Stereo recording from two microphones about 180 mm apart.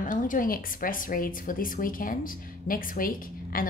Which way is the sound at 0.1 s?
50° left (ahead or behind).